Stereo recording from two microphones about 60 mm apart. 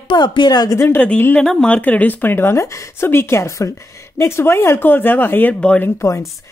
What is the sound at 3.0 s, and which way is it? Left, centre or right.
Speech, left.